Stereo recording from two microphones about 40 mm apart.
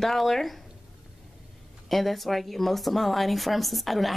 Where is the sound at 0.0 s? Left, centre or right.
Centre.